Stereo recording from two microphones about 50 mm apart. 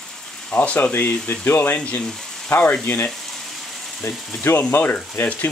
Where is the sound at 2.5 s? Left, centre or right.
Left.